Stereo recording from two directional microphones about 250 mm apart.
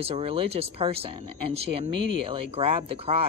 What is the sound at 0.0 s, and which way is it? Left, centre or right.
Speech, right.